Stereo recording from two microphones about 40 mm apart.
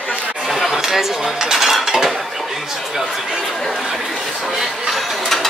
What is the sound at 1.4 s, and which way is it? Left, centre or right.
Cutlery, centre.